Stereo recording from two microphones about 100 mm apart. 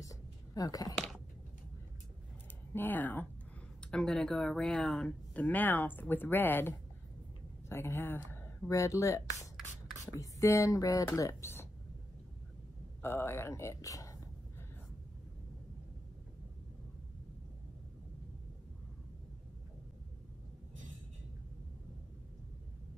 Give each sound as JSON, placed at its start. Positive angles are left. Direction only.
{"t": 0.0, "sound": "a sound", "side_deg": 35}
{"t": 2.7, "sound": "speech", "side_deg": 20}
{"t": 3.8, "sound": "speech", "side_deg": 5}
{"t": 7.7, "sound": "speech", "side_deg": 25}
{"t": 13.0, "sound": "speech", "side_deg": 25}